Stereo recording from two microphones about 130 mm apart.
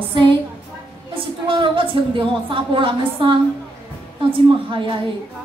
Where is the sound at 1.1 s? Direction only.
40° right (ahead or behind).